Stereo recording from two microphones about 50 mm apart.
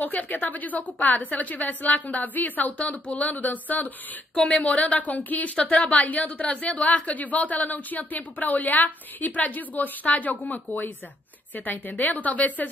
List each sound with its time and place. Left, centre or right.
0.0 s a woman's voice: left
5.6 s a woman's voice: centre
6.3 s a woman's voice: centre
6.6 s speech: left